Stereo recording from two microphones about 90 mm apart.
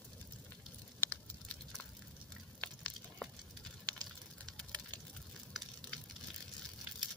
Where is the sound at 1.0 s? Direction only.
20° left (ahead or behind).